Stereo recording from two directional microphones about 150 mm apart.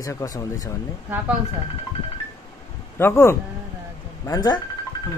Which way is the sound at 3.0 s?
15° left (ahead or behind).